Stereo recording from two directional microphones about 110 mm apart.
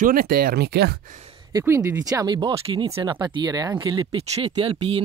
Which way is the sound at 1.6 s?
20° right (ahead or behind).